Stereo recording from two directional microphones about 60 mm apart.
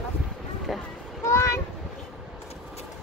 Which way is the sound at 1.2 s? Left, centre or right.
Left.